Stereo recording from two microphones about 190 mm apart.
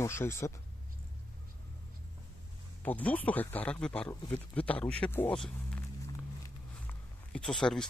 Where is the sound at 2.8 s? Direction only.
10° left (ahead or behind).